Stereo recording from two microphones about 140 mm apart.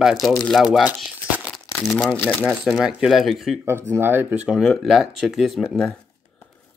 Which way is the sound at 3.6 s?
15° right (ahead or behind).